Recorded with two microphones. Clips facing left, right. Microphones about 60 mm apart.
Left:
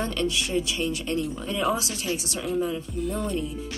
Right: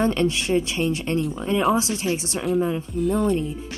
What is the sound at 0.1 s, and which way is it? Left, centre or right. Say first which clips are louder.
Speech: right 5 dB; right.